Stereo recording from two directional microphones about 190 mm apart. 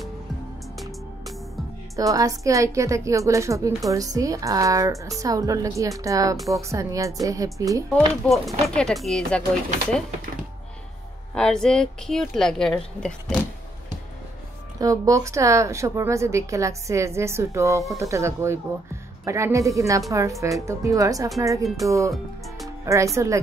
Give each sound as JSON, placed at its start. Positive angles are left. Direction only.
{"t": 2.0, "sound": "a woman's voice", "side_deg": -15}
{"t": 8.3, "sound": "a woman's voice", "side_deg": 0}
{"t": 11.3, "sound": "a woman's voice", "side_deg": 5}
{"t": 14.8, "sound": "a woman's voice", "side_deg": -15}